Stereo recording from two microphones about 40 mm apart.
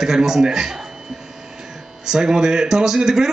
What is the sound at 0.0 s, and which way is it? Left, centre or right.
Speech, centre.